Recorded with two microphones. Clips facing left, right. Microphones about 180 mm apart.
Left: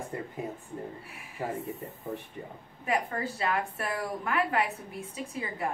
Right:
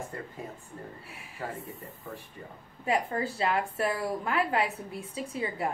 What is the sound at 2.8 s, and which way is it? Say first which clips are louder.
A woman's voice: right 2 dB; 25° right (ahead or behind).